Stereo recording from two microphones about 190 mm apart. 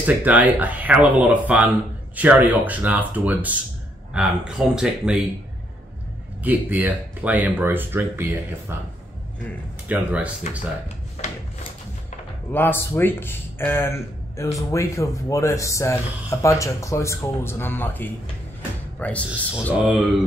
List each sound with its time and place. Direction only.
0.0 s speech: 10° right (ahead or behind)
6.4 s speech: 10° right (ahead or behind)
9.8 s speech: 5° right (ahead or behind)
11.2 s a sound: 35° left (ahead or behind)
12.5 s speech: 10° left (ahead or behind)
19.5 s speech: 5° right (ahead or behind)